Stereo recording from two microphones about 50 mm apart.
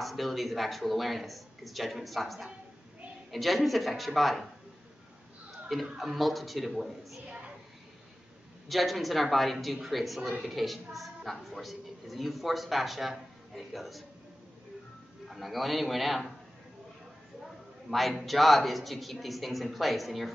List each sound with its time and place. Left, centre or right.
0.0 s a woman's voice: centre
5.9 s a woman's voice: centre
7.2 s a sound: right
8.6 s a woman's voice: centre
15.2 s a woman's voice: centre
17.8 s a woman's voice: centre